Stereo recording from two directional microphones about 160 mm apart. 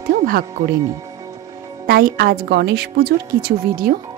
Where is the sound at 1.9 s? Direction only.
70° right (ahead or behind).